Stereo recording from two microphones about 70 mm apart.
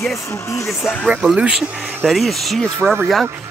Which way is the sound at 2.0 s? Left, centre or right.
Centre.